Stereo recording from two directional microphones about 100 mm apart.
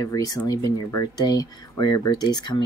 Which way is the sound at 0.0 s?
35° left (ahead or behind).